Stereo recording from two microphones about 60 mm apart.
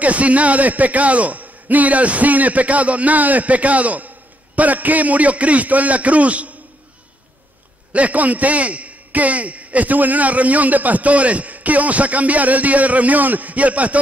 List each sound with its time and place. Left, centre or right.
0.0 s a man's voice: right
7.9 s a man's voice: right